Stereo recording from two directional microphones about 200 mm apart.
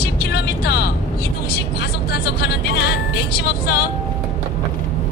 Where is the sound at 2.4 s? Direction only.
55° left (ahead or behind).